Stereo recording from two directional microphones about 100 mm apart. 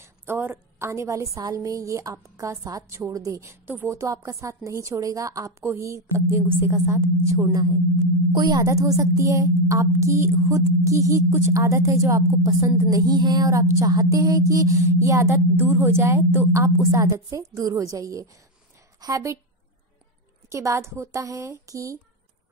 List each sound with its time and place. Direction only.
0.0 s a woman's voice: 25° right (ahead or behind); by 8.6 s 45° right (ahead or behind)
8.6 s a woman's voice: 30° right (ahead or behind)
13.1 s a woman's voice: 45° right (ahead or behind)
20.4 s a woman's voice: 30° right (ahead or behind)